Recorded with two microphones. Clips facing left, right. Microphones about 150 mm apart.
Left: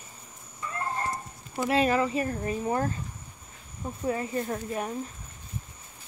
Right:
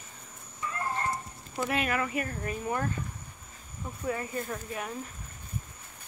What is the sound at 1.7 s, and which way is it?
Speech, 30° left (ahead or behind).